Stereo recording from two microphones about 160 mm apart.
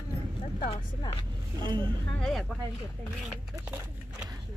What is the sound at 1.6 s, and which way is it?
Vehicle, 30° right (ahead or behind).